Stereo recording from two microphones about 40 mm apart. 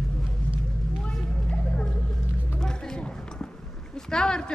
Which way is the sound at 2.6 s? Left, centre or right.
Centre.